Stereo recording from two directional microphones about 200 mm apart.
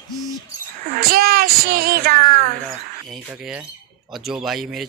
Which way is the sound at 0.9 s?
50° right (ahead or behind).